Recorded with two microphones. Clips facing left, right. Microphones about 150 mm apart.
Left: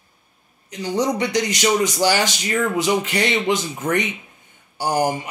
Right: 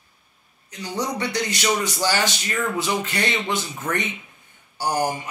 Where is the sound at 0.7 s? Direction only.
20° left (ahead or behind).